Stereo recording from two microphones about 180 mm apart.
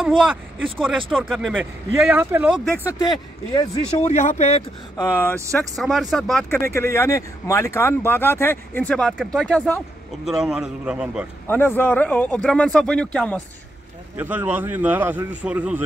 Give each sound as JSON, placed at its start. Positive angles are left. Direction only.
{"t": 0.2, "sound": "speech", "side_deg": -5}
{"t": 2.8, "sound": "speech", "side_deg": 20}
{"t": 4.0, "sound": "speech", "side_deg": 40}
{"t": 4.9, "sound": "speech", "side_deg": 15}
{"t": 5.6, "sound": "a man's voice", "side_deg": 0}
{"t": 6.5, "sound": "a man's voice", "side_deg": 15}
{"t": 11.4, "sound": "speech", "side_deg": 10}
{"t": 14.1, "sound": "speech", "side_deg": -10}